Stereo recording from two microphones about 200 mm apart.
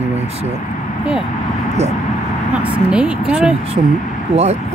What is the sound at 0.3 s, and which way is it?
Speech, 30° right (ahead or behind).